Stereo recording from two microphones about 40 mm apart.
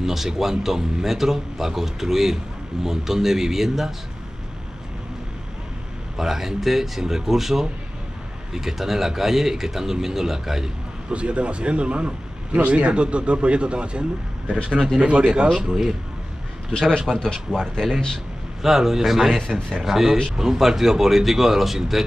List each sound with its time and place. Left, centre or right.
0.0 s speech: centre
6.1 s speech: centre
11.1 s speech: right
15.4 s speech: centre
16.7 s speech: centre
18.6 s speech: centre